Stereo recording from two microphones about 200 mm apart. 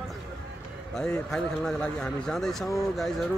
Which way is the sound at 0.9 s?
5° left (ahead or behind).